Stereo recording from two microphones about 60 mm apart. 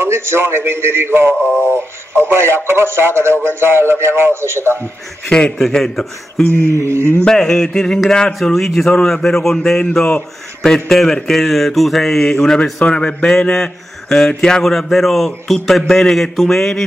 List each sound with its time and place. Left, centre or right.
0.0 s speech: right
1.4 s synthetic singing: left
1.7 s speech: right
5.6 s a man's voice: centre
6.5 s speech: right
7.2 s a man's voice: centre